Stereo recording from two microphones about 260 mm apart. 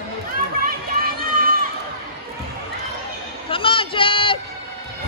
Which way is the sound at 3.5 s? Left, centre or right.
Centre.